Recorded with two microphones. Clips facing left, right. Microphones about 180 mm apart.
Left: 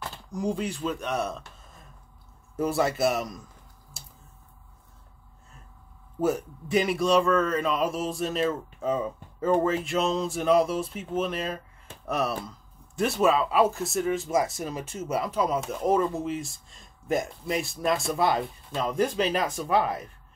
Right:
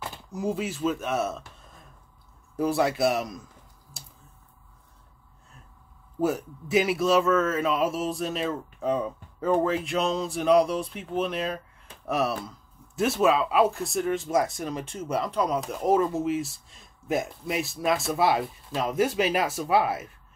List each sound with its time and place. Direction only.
0.0 s speech: 5° right (ahead or behind)
3.9 s typing: centre (ahead or behind)
6.2 s speech: centre (ahead or behind)